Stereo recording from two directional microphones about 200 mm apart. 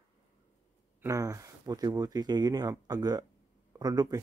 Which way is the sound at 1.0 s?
15° right (ahead or behind).